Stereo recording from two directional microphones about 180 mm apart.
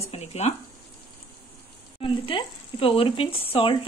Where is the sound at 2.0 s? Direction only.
30° left (ahead or behind).